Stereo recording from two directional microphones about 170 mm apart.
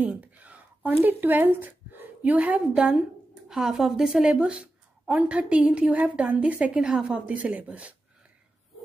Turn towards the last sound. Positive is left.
turn(degrees=-10)  # may be behind; listen again after turning